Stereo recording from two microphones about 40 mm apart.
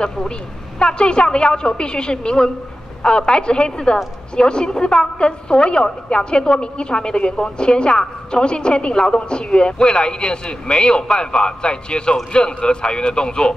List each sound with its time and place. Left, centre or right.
0.7 s a woman's voice: left